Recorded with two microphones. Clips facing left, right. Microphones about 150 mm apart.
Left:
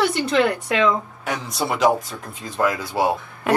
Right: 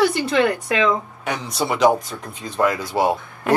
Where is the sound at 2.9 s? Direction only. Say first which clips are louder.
Right 1 dB; 25° right (ahead or behind).